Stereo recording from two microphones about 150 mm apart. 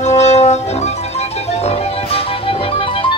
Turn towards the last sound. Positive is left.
turn(degrees=35)  # may be behind; listen again after turning